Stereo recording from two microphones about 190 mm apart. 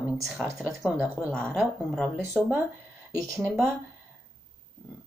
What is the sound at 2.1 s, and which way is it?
A woman's voice, 10° right (ahead or behind).